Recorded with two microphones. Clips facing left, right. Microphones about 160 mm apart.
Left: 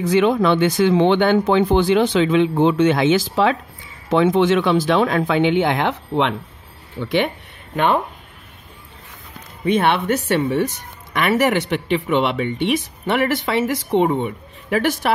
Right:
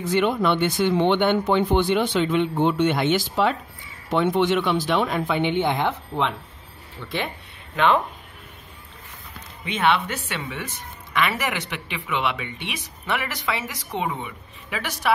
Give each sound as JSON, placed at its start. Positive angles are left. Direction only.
{"t": 0.0, "sound": "speech", "side_deg": 90}
{"t": 7.0, "sound": "speech", "side_deg": 80}
{"t": 7.7, "sound": "speech", "side_deg": 45}
{"t": 9.7, "sound": "speech", "side_deg": 45}